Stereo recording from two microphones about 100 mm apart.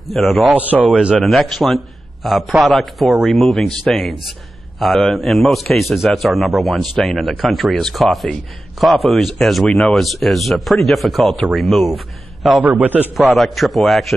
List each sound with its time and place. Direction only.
0.1 s a man's voice: centre (ahead or behind)
0.5 s speech: 15° right (ahead or behind)
1.2 s a man's voice: centre (ahead or behind)
12.6 s speech: 15° right (ahead or behind)
13.1 s a man's voice: centre (ahead or behind)